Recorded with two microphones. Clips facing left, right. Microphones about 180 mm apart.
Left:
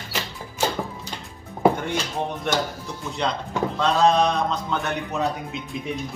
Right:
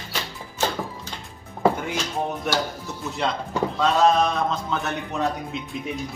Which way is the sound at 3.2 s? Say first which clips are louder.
Even; centre (ahead or behind).